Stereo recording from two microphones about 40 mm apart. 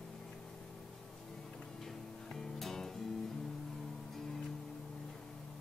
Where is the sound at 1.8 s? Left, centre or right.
Centre.